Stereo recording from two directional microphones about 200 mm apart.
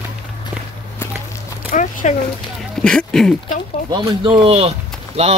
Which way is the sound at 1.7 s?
40° left (ahead or behind).